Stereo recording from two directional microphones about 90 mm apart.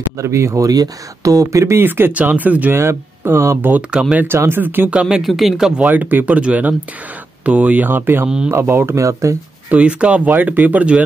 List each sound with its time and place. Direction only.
0.2 s speech: 30° right (ahead or behind)
2.8 s speech: 30° right (ahead or behind)
3.9 s speech: 10° right (ahead or behind)
4.3 s speech: 25° right (ahead or behind)
5.0 s speech: centre (ahead or behind)
5.9 s speech: 20° right (ahead or behind); by 9.4 s 35° right (ahead or behind)
9.7 s speech: 15° right (ahead or behind)